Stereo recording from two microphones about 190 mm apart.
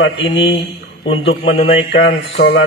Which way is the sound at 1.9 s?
65° left (ahead or behind).